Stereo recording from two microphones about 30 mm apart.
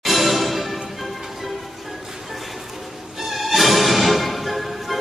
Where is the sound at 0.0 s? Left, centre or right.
Centre.